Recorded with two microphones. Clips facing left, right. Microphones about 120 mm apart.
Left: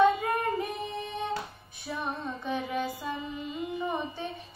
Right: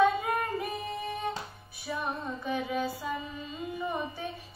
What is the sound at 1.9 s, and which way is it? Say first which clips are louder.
Music: even; centre (ahead or behind).